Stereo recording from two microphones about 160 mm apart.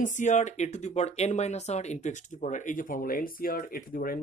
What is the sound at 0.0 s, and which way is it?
Speech, 50° left (ahead or behind).